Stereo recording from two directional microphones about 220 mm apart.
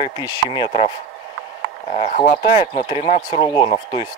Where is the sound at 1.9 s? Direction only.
35° left (ahead or behind).